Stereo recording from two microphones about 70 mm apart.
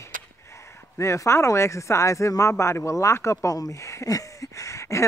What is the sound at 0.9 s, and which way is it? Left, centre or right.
Speech, left.